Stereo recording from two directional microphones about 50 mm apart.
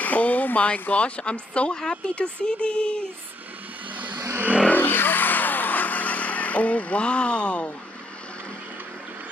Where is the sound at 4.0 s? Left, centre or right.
Right.